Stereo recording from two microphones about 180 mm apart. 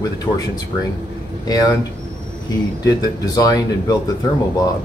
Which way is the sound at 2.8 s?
20° left (ahead or behind).